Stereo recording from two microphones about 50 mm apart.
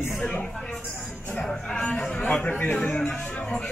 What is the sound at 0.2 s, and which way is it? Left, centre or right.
Speech, left.